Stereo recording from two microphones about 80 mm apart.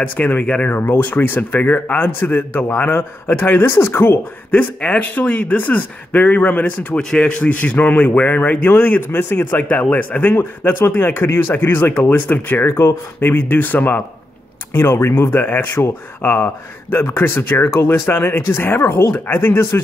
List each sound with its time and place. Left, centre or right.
0.0 s a man's voice: left
4.5 s a man's voice: centre
7.0 s a man's voice: centre; by 19.8 s left